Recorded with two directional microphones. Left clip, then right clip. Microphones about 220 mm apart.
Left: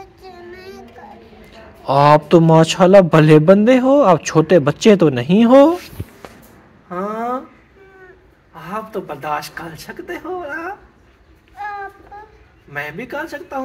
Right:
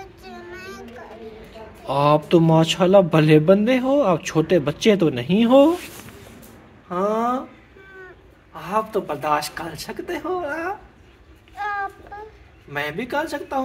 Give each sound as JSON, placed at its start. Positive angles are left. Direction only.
{"t": 0.0, "sound": "child singing", "side_deg": -5}
{"t": 1.9, "sound": "a man's voice", "side_deg": 20}
{"t": 6.9, "sound": "a sound", "side_deg": -15}
{"t": 8.5, "sound": "a woman's voice", "side_deg": -15}
{"t": 11.5, "sound": "child singing", "side_deg": -50}
{"t": 12.7, "sound": "a woman's voice", "side_deg": -15}